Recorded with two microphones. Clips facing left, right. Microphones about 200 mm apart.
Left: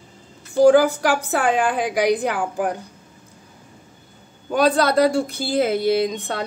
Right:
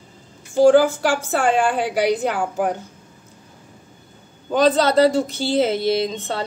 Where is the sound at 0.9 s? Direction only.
15° left (ahead or behind).